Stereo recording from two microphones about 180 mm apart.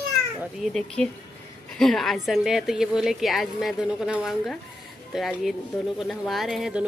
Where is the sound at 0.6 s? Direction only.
5° left (ahead or behind).